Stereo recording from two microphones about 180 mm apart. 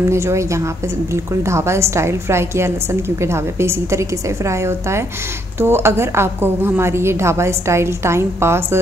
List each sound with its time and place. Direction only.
0.0 s a woman's voice: 15° right (ahead or behind)